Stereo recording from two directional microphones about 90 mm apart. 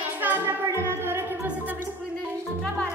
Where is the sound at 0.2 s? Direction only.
20° right (ahead or behind).